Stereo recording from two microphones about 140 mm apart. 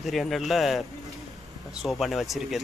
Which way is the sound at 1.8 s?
Centre (ahead or behind).